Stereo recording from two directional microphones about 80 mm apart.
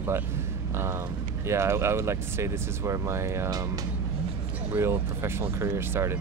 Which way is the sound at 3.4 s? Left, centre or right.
Right.